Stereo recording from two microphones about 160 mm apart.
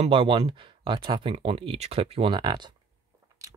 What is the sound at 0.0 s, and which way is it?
Speech, 35° right (ahead or behind).